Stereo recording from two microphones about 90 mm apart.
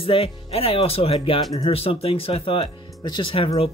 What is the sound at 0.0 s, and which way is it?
Speech, 90° left.